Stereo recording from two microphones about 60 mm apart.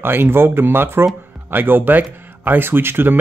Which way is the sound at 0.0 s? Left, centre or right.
Right.